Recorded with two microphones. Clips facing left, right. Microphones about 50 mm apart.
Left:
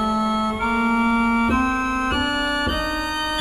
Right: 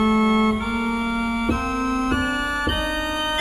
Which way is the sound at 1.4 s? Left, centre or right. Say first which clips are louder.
Left 3 dB; left.